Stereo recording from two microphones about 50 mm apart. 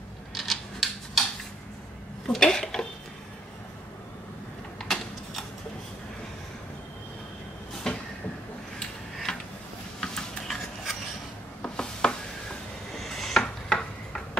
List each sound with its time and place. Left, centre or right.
0.3 s a sound: centre
2.2 s speech: centre
4.8 s typewriter: centre
7.8 s a sound: centre
11.7 s chopping: centre
12.9 s rub: centre